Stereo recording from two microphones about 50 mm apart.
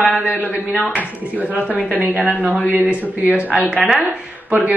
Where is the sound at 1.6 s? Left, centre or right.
Right.